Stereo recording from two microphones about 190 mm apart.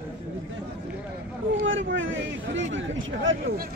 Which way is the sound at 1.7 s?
80° right.